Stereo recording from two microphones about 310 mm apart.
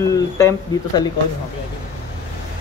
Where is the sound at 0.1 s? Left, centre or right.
Centre.